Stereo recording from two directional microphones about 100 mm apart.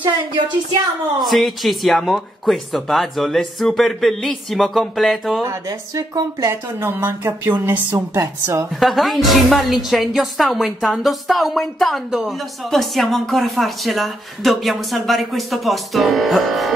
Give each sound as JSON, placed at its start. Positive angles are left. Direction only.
{"t": 1.2, "sound": "a woman's voice", "side_deg": 0}
{"t": 5.4, "sound": "speech", "side_deg": -30}
{"t": 8.7, "sound": "a woman's voice", "side_deg": 0}